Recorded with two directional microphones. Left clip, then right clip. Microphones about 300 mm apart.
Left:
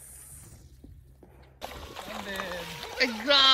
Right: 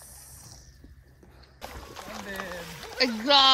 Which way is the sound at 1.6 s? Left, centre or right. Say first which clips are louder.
Left 1 dB; centre.